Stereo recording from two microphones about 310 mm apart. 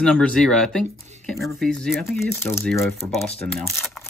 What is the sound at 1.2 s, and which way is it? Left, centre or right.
Speech, centre.